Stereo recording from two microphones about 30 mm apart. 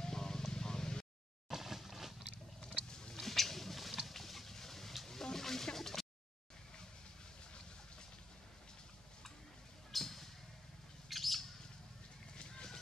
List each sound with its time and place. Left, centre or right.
0.0 s music: centre
1.5 s a sound: centre
2.6 s boat: left
3.2 s rodents: centre
5.0 s a sound: centre
9.9 s basketball bounce: centre
11.1 s bird: centre